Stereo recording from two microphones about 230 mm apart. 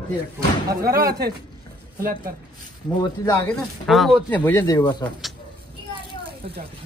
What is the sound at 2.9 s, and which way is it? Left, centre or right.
Speech, centre.